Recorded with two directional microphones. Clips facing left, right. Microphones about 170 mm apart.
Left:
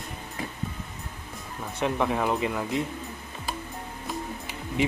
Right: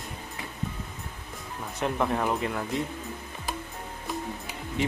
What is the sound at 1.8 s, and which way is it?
Speech, centre (ahead or behind).